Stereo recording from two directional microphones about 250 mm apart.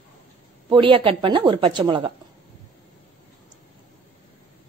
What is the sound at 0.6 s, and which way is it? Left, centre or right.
A woman's voice, centre.